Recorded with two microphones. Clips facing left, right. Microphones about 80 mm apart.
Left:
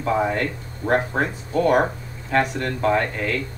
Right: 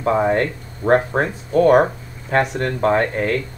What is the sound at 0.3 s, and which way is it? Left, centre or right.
Speech, right.